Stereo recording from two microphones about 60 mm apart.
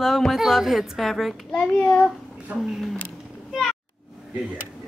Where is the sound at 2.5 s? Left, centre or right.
Right.